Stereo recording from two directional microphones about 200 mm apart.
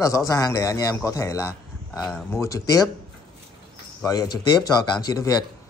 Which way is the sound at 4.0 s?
20° left (ahead or behind).